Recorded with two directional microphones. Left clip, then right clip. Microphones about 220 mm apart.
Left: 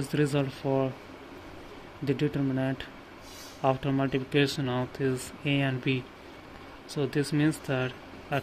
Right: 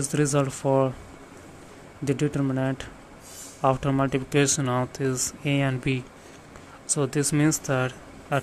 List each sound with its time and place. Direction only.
0.1 s speech: 15° right (ahead or behind)
2.0 s speech: 15° right (ahead or behind)